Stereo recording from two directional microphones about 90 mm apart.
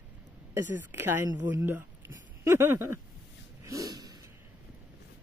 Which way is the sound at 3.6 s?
40° right (ahead or behind).